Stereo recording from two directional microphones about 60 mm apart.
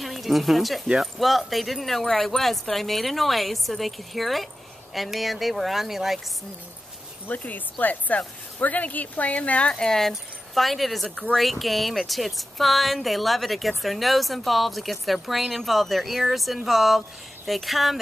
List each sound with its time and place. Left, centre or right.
0.0 s speech: centre
7.2 s speech: left; by 17.9 s centre